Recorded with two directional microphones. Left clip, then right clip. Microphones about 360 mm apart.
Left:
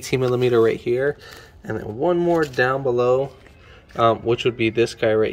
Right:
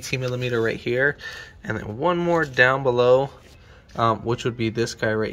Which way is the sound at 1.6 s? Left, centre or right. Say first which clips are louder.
Left 1 dB; centre.